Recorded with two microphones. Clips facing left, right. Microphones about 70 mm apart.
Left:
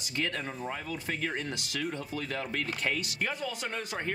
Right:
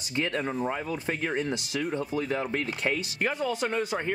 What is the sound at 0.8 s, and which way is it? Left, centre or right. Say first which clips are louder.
Speech: right 4 dB; right.